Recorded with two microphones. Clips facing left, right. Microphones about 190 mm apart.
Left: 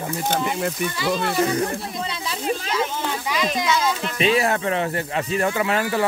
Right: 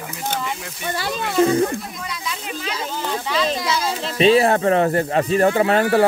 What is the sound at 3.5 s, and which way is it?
Speech, 30° right (ahead or behind).